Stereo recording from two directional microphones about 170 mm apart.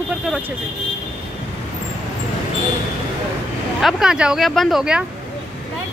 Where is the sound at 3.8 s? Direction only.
Centre (ahead or behind).